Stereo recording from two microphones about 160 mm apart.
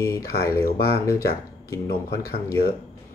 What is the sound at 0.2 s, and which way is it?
Speech, 75° left (ahead or behind).